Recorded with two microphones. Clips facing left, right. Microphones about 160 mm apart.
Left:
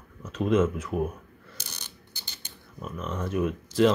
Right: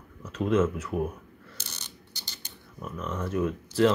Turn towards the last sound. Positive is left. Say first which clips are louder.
# left 1 dB
turn(degrees=15)  # may be behind; listen again after turning